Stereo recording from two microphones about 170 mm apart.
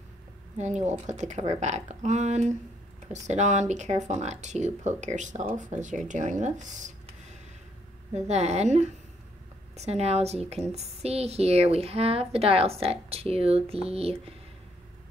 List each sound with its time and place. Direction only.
0.6 s speech: 40° right (ahead or behind)
8.1 s a woman's voice: 40° right (ahead or behind)